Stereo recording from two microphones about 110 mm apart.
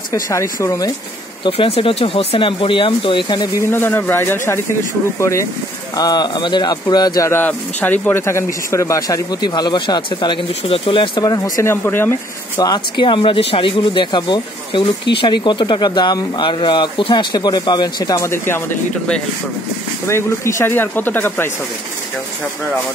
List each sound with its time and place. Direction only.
0.1 s speech: 30° left (ahead or behind)
1.4 s speech: 55° left (ahead or behind)
3.7 s speech: 20° left (ahead or behind)
5.9 s speech: 40° left (ahead or behind)
7.2 s speech: 15° left (ahead or behind); by 11.7 s 35° left (ahead or behind)
11.7 s speech: 20° left (ahead or behind)
12.5 s speech: 40° left (ahead or behind)
13.0 s speech: 50° left (ahead or behind); by 18.6 s 25° left (ahead or behind)
20.1 s speech: 25° left (ahead or behind)